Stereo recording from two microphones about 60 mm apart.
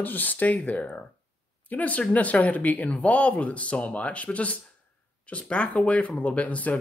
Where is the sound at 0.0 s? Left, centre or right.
Left.